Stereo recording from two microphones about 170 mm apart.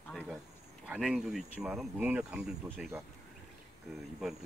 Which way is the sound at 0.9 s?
5° right (ahead or behind).